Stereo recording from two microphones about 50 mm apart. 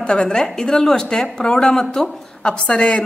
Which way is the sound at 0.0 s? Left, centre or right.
Centre.